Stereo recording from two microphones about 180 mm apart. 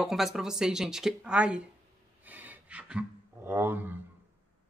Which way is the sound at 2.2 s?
10° right (ahead or behind).